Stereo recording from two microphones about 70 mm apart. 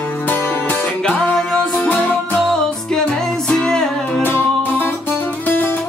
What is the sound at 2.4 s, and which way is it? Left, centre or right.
Music, centre.